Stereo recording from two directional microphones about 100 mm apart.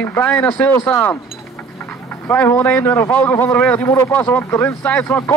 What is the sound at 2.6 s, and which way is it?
Speech, 15° left (ahead or behind).